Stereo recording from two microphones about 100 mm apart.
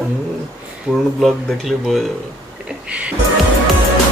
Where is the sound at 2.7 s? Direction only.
10° right (ahead or behind).